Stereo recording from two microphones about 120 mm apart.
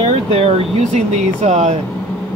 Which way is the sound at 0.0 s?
55° right (ahead or behind).